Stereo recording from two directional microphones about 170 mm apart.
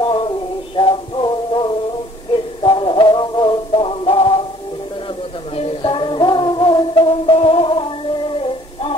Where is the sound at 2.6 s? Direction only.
30° left (ahead or behind).